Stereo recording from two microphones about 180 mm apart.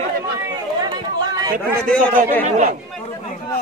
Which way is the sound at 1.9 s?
10° left (ahead or behind).